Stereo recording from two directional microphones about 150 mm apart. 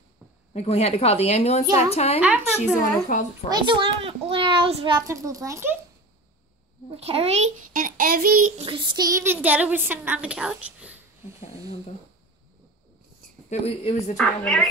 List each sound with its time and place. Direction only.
0.5 s a woman's voice: 45° left (ahead or behind)
2.1 s a woman's voice: 10° right (ahead or behind)
2.5 s a woman's voice: 55° left (ahead or behind)
3.4 s a child's voice: 30° right (ahead or behind)
4.9 s a child's voice: 20° right (ahead or behind)
7.0 s a child's voice: 40° right (ahead or behind)
7.7 s child singing: 70° right (ahead or behind)
8.5 s a woman's voice: 35° right (ahead or behind); by 11.0 s 10° right (ahead or behind)
13.5 s a woman's voice: 45° left (ahead or behind)
14.1 s a woman's voice: 5° left (ahead or behind)